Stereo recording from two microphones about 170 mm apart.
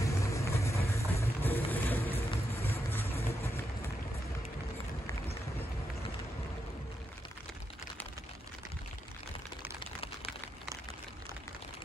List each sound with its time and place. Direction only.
0.0 s vehicle: 15° left (ahead or behind)